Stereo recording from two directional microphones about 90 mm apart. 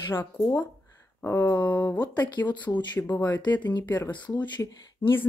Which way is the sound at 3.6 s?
55° left (ahead or behind).